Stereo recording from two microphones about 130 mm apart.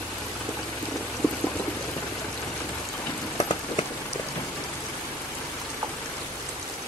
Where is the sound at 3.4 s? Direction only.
40° left (ahead or behind).